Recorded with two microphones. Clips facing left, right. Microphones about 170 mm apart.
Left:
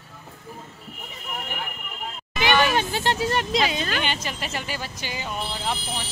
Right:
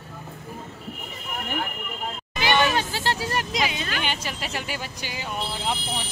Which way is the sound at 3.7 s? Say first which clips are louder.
Left 3 dB; 40° left (ahead or behind).